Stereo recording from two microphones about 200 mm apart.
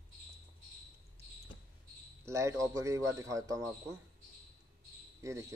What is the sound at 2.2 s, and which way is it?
Speech, 15° right (ahead or behind).